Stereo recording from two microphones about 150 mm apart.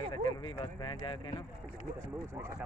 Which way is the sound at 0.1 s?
30° left (ahead or behind).